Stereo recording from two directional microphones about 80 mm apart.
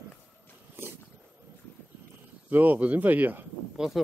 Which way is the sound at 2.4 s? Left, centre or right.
Right.